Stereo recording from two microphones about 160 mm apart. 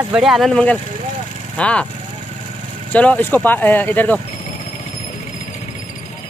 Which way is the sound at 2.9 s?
10° left (ahead or behind).